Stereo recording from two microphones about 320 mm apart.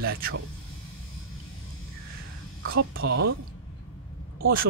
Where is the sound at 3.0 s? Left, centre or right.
Right.